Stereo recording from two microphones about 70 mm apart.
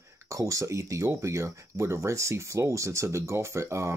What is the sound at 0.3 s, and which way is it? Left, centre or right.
Speech, right.